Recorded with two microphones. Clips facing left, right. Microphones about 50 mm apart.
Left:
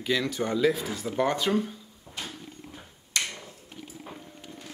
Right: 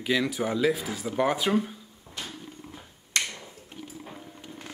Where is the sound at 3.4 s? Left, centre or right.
Centre.